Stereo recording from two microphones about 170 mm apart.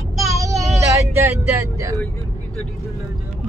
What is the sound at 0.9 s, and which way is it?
Speech, 15° right (ahead or behind).